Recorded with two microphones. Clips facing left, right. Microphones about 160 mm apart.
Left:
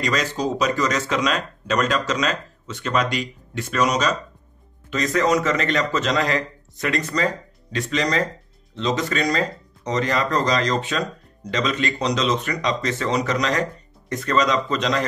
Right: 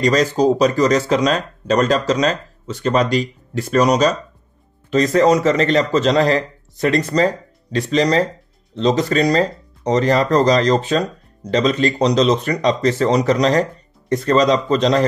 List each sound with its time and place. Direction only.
0.0 s speech: 35° right (ahead or behind)